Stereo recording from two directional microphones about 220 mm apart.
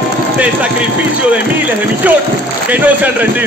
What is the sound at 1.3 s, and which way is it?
A man's voice, 5° right (ahead or behind).